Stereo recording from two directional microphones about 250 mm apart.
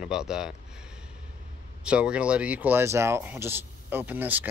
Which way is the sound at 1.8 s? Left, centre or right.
Centre.